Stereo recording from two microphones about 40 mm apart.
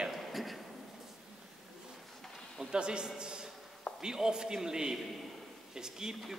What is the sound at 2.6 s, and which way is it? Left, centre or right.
Speech, right.